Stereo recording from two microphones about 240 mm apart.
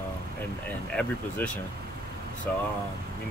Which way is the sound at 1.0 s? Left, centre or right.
Centre.